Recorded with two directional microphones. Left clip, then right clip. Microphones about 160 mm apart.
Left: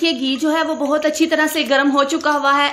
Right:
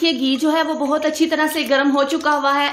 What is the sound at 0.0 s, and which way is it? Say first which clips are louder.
A woman's voice: even; centre (ahead or behind).